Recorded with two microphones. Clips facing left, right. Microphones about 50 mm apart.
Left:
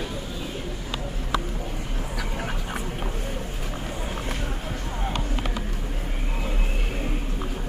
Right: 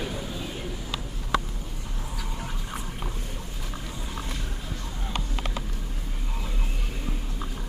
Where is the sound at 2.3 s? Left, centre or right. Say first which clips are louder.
Left 5 dB; left.